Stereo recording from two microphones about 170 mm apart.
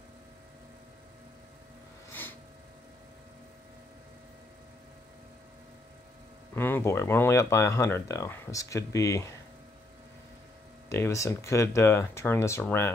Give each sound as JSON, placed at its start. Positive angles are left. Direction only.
{"t": 6.5, "sound": "speech", "side_deg": 10}
{"t": 10.9, "sound": "speech", "side_deg": 15}